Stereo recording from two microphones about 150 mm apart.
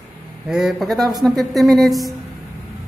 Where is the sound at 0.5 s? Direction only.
Centre (ahead or behind).